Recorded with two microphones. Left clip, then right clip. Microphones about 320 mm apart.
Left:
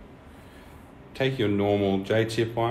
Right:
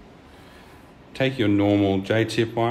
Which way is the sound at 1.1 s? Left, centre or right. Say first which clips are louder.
Right 4 dB; right.